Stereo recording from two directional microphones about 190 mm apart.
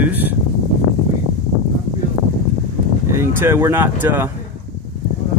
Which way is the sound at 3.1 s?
15° right (ahead or behind).